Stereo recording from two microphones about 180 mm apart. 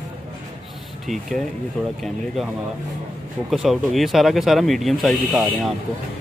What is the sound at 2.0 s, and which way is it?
Speech, centre (ahead or behind).